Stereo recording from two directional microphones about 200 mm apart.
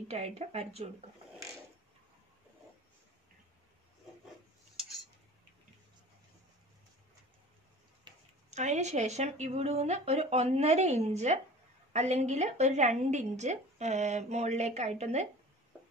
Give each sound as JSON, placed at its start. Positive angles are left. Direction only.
{"t": 0.1, "sound": "a woman's voice", "side_deg": -35}
{"t": 8.5, "sound": "a woman's voice", "side_deg": -35}